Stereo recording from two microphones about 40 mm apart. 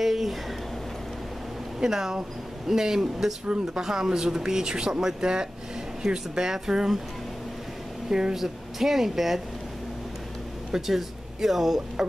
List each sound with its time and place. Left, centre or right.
0.0 s speech: centre
1.8 s speech: centre
8.1 s speech: centre
10.7 s speech: centre